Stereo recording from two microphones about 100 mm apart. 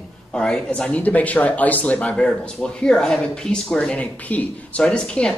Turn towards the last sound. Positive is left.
turn(degrees=10)  # may be behind; listen again after turning